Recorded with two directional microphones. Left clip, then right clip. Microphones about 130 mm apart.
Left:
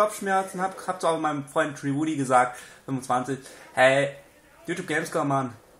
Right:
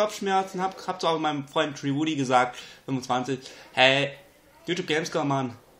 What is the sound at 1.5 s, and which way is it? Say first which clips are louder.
Speech: left 1 dB; centre (ahead or behind).